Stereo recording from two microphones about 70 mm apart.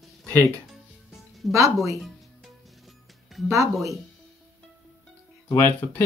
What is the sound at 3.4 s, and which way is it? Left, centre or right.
Speech, right.